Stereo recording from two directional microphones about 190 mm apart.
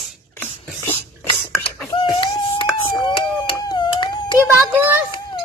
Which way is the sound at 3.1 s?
25° left (ahead or behind).